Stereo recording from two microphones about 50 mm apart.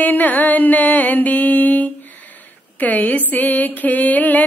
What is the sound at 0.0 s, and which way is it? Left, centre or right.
Music, left.